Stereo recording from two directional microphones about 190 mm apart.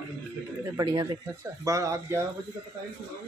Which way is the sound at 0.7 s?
20° right (ahead or behind).